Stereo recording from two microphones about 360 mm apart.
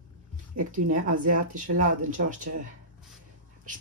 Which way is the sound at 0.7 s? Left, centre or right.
Right.